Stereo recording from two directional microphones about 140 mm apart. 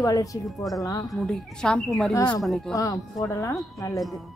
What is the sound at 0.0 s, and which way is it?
Speech, 25° left (ahead or behind).